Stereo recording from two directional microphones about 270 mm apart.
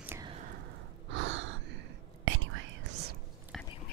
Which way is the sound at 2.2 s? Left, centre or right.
Right.